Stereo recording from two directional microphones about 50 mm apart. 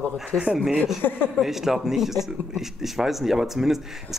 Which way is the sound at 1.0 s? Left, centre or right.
Left.